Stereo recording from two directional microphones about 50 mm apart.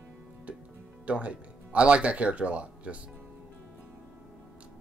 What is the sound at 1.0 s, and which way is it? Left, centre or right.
Speech, right.